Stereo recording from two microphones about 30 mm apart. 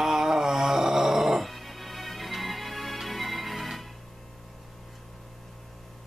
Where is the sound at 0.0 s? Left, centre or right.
Centre.